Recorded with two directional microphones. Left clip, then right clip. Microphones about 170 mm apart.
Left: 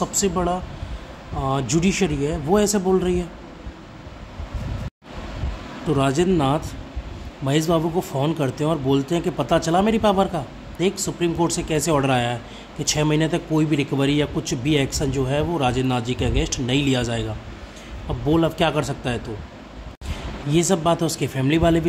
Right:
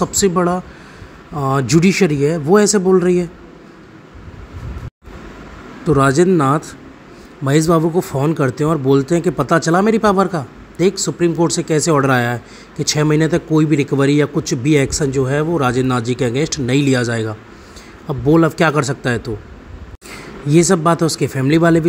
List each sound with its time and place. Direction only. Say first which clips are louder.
0.0 s speech: right 7 dB; 30° right (ahead or behind)
5.9 s speech: right 7 dB; 25° right (ahead or behind)
20.4 s speech: right 6 dB; 25° right (ahead or behind)